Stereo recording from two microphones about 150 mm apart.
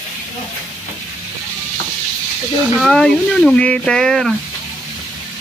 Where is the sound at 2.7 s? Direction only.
Centre (ahead or behind).